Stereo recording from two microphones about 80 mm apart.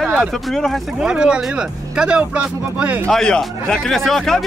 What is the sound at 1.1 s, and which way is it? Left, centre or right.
Speech, centre.